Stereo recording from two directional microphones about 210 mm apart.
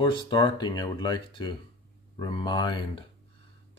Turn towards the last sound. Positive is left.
turn(degrees=20)  # may be behind; listen again after turning